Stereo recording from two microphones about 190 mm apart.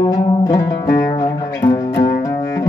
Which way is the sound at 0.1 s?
15° left (ahead or behind).